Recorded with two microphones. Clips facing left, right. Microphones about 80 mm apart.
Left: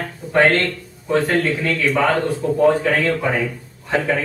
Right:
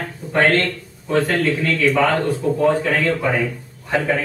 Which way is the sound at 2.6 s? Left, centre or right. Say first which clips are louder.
Left 2 dB; centre.